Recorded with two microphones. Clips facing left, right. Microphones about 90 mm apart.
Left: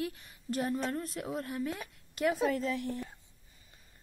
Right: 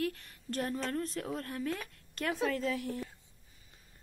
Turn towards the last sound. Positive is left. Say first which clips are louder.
# even
turn(degrees=0)  # may be behind; listen again after turning